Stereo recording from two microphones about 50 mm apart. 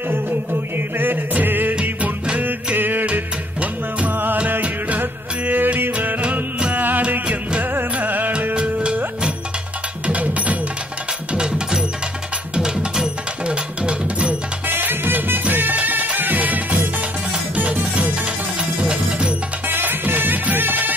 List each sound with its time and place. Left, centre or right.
0.1 s music: right
1.8 s music: right
7.0 s music: right
8.0 s music: right
10.0 s music: right
11.3 s music: centre
14.7 s music: right
17.9 s music: right
19.7 s music: right